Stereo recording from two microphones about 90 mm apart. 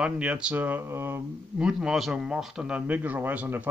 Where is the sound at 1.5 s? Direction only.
10° right (ahead or behind).